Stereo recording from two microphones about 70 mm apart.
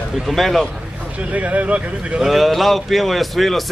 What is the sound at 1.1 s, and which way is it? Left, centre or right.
Speech, right.